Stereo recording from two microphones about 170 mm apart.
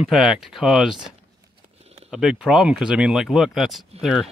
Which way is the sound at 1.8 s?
35° right (ahead or behind).